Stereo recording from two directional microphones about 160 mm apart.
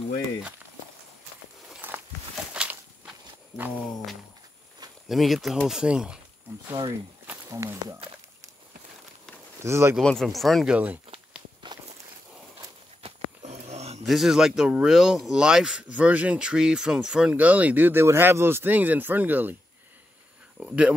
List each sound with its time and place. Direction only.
1.7 s walk: 10° right (ahead or behind)
5.0 s speech: centre (ahead or behind)
7.2 s a sound: 20° right (ahead or behind)
9.6 s speech: 15° right (ahead or behind)
9.9 s speech: centre (ahead or behind)
11.6 s walk: 30° right (ahead or behind)
13.4 s a sound: 45° right (ahead or behind)
14.0 s speech: centre (ahead or behind)
20.5 s a sound: 5° right (ahead or behind)